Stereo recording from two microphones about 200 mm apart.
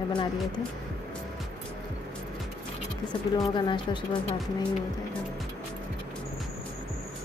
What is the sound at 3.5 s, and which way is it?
Speech, 25° left (ahead or behind).